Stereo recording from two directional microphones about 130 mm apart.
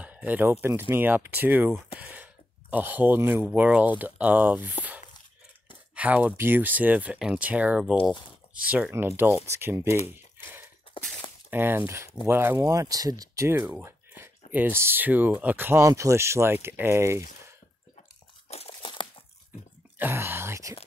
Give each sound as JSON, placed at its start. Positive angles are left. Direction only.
{"t": 0.0, "sound": "speech", "side_deg": -10}
{"t": 5.9, "sound": "speech", "side_deg": -15}
{"t": 11.5, "sound": "speech", "side_deg": -15}
{"t": 13.8, "sound": "a sound", "side_deg": -20}
{"t": 14.5, "sound": "speech", "side_deg": -15}
{"t": 18.5, "sound": "crumpling", "side_deg": 45}
{"t": 20.0, "sound": "speech", "side_deg": -15}